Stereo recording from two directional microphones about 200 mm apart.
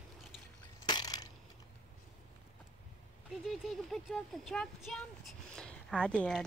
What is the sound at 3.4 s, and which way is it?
Speech, centre (ahead or behind).